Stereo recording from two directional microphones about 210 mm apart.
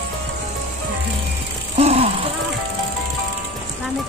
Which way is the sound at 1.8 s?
30° right (ahead or behind).